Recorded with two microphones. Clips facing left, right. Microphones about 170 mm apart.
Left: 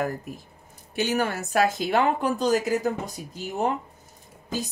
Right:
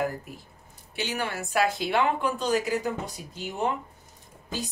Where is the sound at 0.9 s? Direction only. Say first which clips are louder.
Left 6 dB; 45° left (ahead or behind).